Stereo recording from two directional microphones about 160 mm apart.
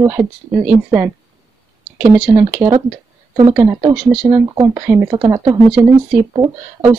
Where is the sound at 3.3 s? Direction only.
30° right (ahead or behind).